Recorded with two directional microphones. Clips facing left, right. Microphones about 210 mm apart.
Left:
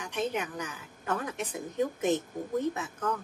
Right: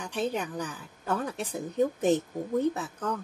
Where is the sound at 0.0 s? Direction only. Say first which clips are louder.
Right 2 dB; 30° right (ahead or behind).